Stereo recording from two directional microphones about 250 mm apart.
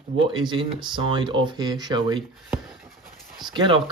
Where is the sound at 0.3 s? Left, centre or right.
Centre.